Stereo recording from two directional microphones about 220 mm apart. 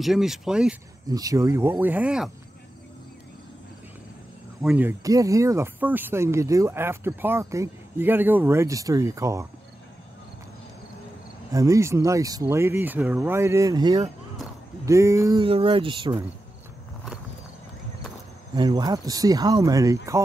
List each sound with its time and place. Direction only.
0.0 s speech: centre (ahead or behind)
1.0 s speech: 15° right (ahead or behind)
4.6 s speech: 5° right (ahead or behind)
11.5 s speech: 15° right (ahead or behind)
18.6 s speech: 15° right (ahead or behind)